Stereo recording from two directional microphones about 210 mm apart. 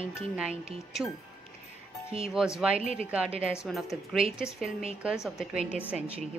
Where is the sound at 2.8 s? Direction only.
30° right (ahead or behind).